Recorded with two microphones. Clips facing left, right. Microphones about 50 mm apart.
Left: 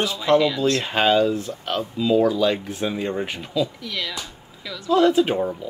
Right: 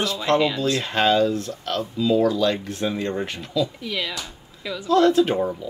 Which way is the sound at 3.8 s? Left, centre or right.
Centre.